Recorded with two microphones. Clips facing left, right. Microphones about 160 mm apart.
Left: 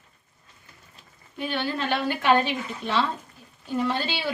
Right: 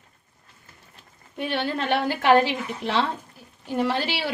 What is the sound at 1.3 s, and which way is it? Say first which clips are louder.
Speech: right 2 dB; 70° right (ahead or behind).